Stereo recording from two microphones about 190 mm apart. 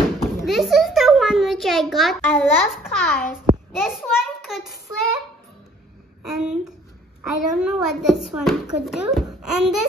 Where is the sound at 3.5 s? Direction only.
40° right (ahead or behind).